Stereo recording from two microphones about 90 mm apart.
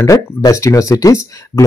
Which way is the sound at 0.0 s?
40° left (ahead or behind).